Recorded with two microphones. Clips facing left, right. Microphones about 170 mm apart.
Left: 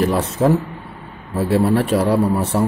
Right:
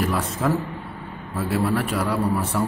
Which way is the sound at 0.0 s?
30° left (ahead or behind).